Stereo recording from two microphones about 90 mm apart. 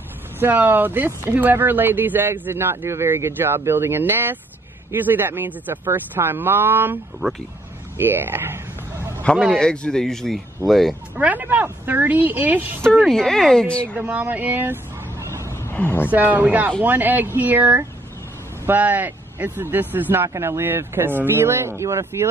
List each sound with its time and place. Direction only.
0.4 s speech: 20° right (ahead or behind)
7.2 s speech: centre (ahead or behind)
8.0 s speech: 20° right (ahead or behind)
9.3 s a man's voice: 10° left (ahead or behind)
11.1 s speech: 20° right (ahead or behind)
13.1 s speech: 5° left (ahead or behind)
13.9 s speech: 20° right (ahead or behind)
15.4 s a sound: 30° left (ahead or behind)
15.7 s speech: 20° left (ahead or behind)
16.1 s speech: 20° right (ahead or behind)